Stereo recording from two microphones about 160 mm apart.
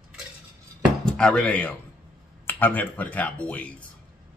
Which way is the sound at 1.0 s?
5° left (ahead or behind).